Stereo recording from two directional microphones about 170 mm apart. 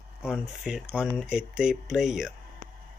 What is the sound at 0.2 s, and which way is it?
Speech, 5° right (ahead or behind).